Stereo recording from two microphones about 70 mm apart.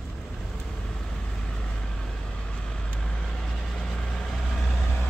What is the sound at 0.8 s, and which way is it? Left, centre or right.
Vehicle, centre.